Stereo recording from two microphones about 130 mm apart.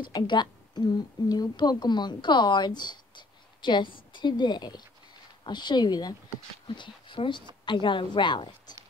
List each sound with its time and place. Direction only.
0.1 s a woman's voice: 35° left (ahead or behind)